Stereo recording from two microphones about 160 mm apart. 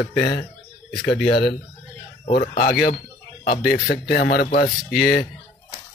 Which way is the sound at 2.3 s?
70° left (ahead or behind).